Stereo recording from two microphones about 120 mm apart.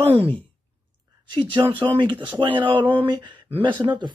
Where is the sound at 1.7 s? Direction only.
40° right (ahead or behind).